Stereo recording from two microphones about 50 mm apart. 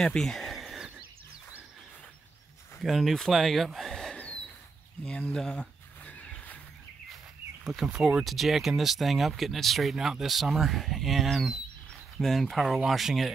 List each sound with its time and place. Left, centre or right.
0.0 s a sound: centre
2.8 s speech: centre
5.0 s speech: left
5.5 s a sound: left
7.6 s speech: centre
7.9 s speech: centre
8.2 s speech: centre